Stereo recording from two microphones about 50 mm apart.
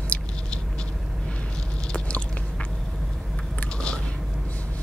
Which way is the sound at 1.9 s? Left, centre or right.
Left.